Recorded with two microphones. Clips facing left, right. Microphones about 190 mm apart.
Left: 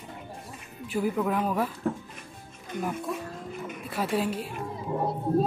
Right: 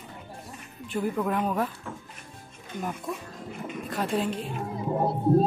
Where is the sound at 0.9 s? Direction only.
5° left (ahead or behind).